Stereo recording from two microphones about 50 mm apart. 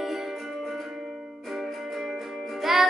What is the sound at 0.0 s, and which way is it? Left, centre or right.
Music, centre.